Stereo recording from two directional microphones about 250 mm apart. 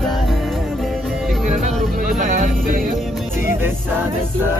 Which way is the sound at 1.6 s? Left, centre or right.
Right.